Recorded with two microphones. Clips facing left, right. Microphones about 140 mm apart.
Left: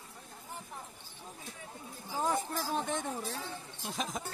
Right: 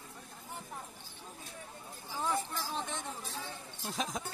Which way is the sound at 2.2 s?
45° left (ahead or behind).